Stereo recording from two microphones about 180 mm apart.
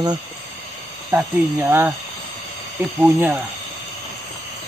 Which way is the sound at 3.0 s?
10° right (ahead or behind).